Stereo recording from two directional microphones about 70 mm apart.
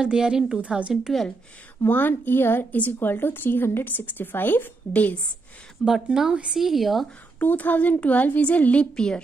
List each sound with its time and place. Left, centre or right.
0.0 s a woman's voice: centre
1.9 s a woman's voice: left
5.9 s speech: centre
7.3 s a woman's voice: left